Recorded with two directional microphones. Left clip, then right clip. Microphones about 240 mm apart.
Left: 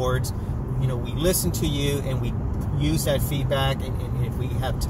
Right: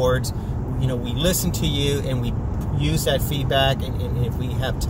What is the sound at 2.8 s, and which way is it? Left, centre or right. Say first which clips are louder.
Speech: right 2 dB; centre.